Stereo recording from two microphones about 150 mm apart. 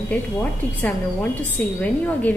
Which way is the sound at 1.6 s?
10° left (ahead or behind).